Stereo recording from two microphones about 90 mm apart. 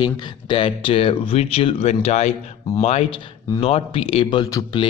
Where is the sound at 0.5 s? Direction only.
90° left.